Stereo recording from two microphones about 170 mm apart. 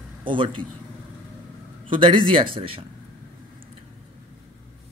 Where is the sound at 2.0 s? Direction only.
30° right (ahead or behind).